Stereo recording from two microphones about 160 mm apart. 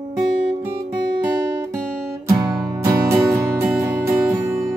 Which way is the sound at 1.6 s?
20° right (ahead or behind).